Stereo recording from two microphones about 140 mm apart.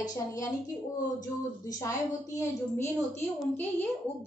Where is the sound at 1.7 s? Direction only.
25° left (ahead or behind).